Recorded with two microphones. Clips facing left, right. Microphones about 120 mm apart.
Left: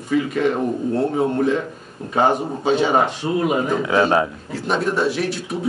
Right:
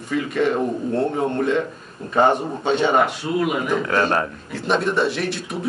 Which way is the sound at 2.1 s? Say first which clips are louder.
Right 1 dB; 5° left (ahead or behind).